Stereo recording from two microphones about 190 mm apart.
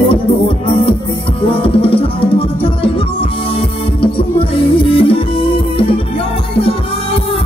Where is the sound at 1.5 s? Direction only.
30° left (ahead or behind).